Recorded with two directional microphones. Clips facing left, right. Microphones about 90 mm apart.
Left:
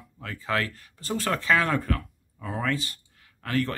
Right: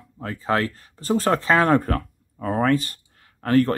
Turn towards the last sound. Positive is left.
turn(degrees=-40)  # may be behind; listen again after turning